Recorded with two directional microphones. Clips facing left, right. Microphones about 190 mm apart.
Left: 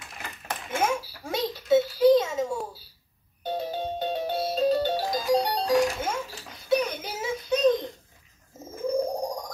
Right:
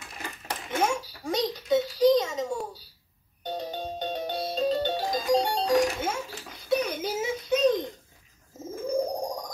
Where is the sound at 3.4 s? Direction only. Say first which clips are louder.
Left 3 dB; 5° left (ahead or behind).